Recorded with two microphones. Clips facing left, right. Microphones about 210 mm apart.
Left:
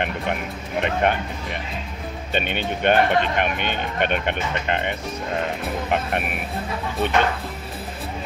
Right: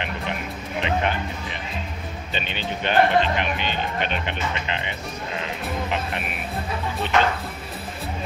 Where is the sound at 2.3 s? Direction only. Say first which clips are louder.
Left 5 dB; 55° left (ahead or behind).